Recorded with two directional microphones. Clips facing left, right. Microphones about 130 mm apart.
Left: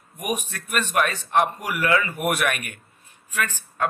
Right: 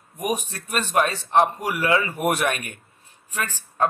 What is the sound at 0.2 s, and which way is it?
A man's voice, 30° right (ahead or behind).